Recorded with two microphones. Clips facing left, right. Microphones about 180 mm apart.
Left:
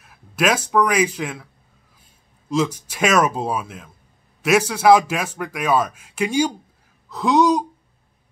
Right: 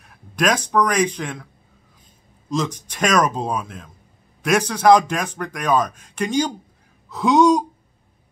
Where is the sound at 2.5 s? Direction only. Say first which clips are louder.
Left 3 dB; 10° left (ahead or behind).